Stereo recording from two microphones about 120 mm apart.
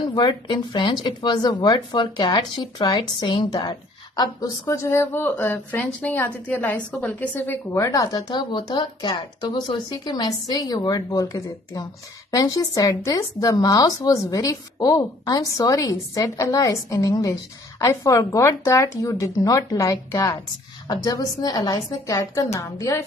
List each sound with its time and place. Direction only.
0.1 s speech: 40° left (ahead or behind)
4.2 s speech: 25° left (ahead or behind)